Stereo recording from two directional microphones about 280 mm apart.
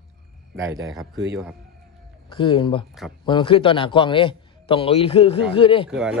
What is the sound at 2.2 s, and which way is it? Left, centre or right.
A man's voice, centre.